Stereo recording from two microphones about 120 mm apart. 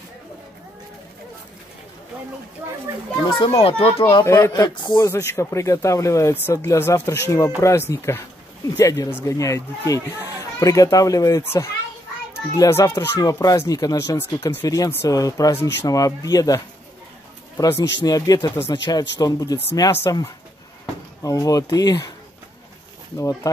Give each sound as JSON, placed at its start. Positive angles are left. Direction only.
{"t": 3.3, "sound": "a child's voice", "side_deg": 40}
{"t": 4.2, "sound": "speech", "side_deg": 30}
{"t": 5.0, "sound": "speech", "side_deg": 25}
{"t": 23.1, "sound": "speech", "side_deg": 25}